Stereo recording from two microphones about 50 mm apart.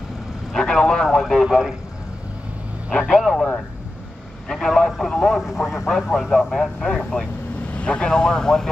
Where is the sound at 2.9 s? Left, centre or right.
Centre.